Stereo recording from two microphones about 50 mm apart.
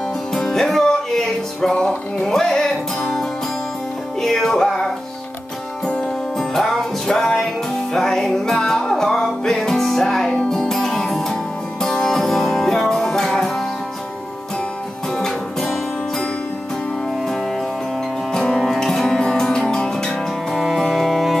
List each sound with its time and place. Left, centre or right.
0.3 s music: centre
1.7 s music: centre
6.3 s music: centre
15.1 s music: centre
18.3 s music: centre
20.5 s music: centre